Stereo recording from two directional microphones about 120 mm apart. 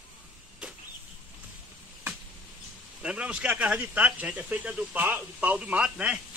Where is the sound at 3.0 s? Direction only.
10° right (ahead or behind).